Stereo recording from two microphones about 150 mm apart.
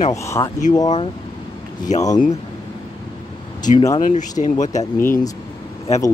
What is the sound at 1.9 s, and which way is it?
Speech, 50° left (ahead or behind).